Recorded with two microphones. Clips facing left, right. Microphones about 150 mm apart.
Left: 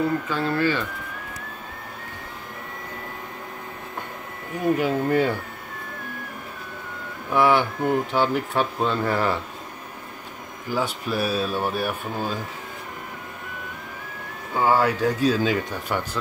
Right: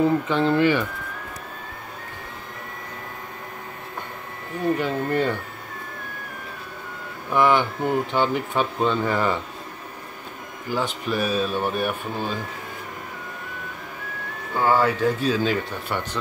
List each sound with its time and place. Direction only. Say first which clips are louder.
0.0 s speech: right 4 dB; 20° right (ahead or behind)
4.6 s speech: left 2 dB; 10° left (ahead or behind)
7.2 s speech: even; 5° left (ahead or behind)
10.7 s speech: even; 10° left (ahead or behind)
14.5 s speech: even; 10° left (ahead or behind)